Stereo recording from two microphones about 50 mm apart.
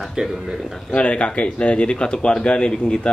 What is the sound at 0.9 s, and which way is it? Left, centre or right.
Speech, left.